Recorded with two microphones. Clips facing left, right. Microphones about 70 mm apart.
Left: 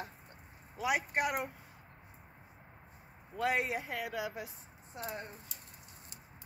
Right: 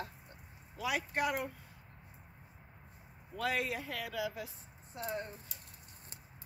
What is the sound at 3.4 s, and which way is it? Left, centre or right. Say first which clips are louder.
Speech: left 3 dB; left.